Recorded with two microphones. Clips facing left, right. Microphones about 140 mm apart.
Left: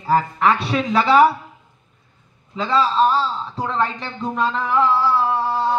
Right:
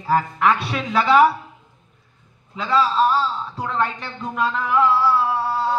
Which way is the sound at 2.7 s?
5° right (ahead or behind).